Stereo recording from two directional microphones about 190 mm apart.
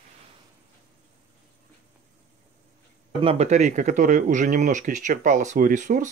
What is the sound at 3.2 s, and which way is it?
Speech, 30° right (ahead or behind).